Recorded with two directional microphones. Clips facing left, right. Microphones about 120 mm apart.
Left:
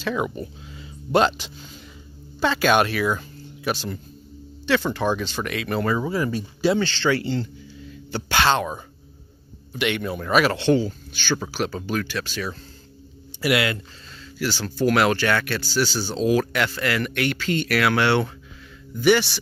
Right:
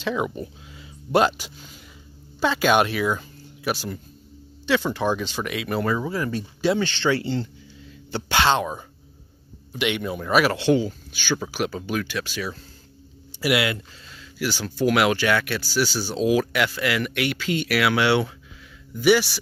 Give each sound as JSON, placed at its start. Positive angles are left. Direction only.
{"t": 0.0, "sound": "speech", "side_deg": -15}
{"t": 5.9, "sound": "speech", "side_deg": 10}
{"t": 6.8, "sound": "a man's voice", "side_deg": -20}